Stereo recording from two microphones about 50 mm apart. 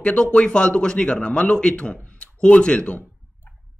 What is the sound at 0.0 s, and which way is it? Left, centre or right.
A man's voice, left.